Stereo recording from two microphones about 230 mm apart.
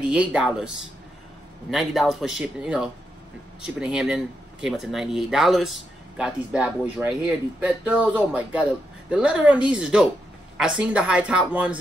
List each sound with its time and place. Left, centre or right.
0.0 s speech: centre
1.7 s speech: centre